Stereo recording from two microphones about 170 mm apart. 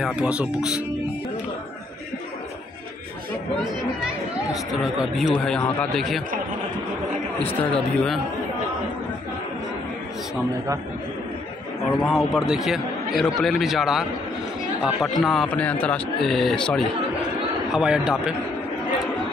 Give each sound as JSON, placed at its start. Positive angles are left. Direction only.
{"t": 0.0, "sound": "speech", "side_deg": -5}
{"t": 4.0, "sound": "speech", "side_deg": -5}
{"t": 7.7, "sound": "speech", "side_deg": 5}
{"t": 12.0, "sound": "speech", "side_deg": 0}